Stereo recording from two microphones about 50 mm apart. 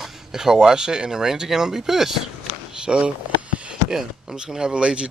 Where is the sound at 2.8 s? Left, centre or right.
Centre.